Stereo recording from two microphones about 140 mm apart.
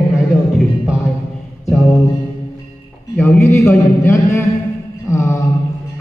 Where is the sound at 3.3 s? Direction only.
20° left (ahead or behind).